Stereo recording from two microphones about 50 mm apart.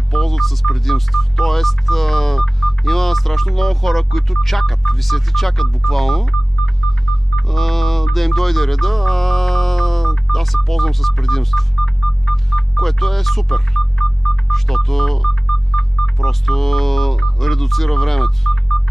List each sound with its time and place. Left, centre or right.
0.1 s music: centre
11.8 s telephone dialing: centre
14.5 s speech: centre